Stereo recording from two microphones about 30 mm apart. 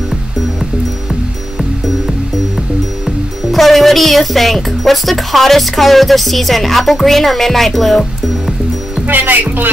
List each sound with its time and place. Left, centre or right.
3.5 s speech: centre
9.0 s speech: right